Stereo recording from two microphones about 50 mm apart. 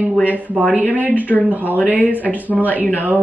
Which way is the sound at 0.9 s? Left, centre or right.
Right.